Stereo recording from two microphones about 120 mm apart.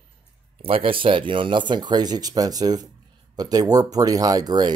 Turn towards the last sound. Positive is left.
turn(degrees=-35)  # may be behind; listen again after turning